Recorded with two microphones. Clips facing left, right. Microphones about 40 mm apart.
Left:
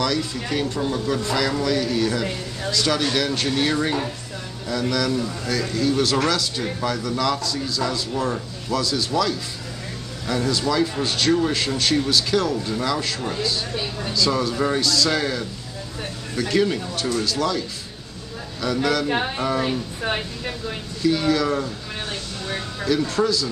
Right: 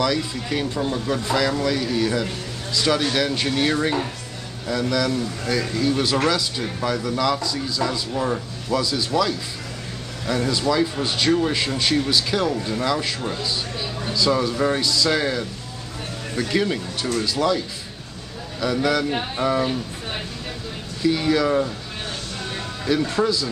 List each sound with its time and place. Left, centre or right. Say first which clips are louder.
0.0 s speech: right 1 dB; centre
21.0 s speech: even; centre
23.0 s speech: even; centre